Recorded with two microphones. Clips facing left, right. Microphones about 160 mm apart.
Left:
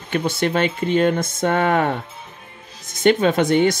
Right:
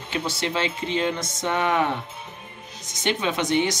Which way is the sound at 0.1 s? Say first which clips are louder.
Left 7 dB; 55° left (ahead or behind).